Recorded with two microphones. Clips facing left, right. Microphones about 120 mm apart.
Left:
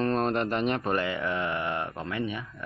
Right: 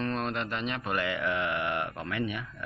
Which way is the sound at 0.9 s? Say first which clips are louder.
Left 2 dB; 30° left (ahead or behind).